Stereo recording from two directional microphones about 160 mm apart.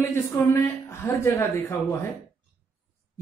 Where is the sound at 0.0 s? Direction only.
15° left (ahead or behind).